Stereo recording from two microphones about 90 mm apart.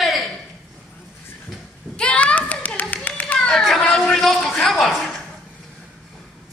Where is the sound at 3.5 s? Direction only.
Centre (ahead or behind).